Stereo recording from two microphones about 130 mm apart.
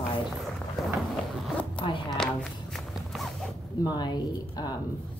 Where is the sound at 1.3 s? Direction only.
10° left (ahead or behind).